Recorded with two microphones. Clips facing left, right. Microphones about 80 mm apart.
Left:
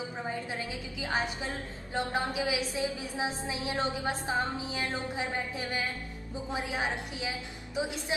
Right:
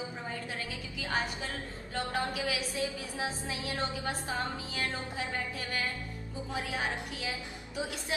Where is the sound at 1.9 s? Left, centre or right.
Left.